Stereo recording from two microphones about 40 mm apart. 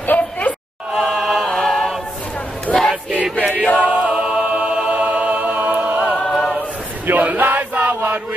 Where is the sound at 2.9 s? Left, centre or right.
Centre.